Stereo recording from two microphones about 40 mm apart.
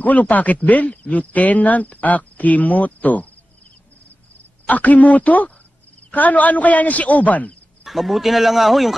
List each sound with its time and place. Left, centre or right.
0.0 s speech: left
4.6 s speech: left
7.8 s speech: centre